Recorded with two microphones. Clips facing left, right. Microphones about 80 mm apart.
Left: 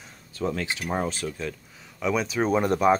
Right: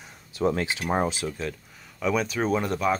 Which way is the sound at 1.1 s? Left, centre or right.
Centre.